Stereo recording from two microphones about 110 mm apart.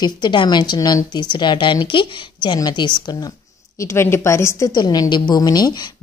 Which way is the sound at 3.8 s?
25° left (ahead or behind).